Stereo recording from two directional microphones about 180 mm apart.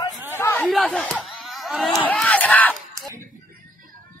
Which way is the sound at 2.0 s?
5° left (ahead or behind).